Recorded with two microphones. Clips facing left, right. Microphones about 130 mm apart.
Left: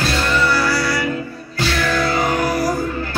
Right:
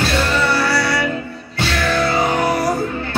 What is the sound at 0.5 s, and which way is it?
Music, 25° right (ahead or behind).